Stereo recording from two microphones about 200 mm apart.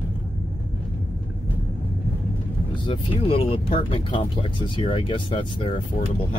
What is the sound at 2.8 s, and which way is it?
Speech, 25° left (ahead or behind).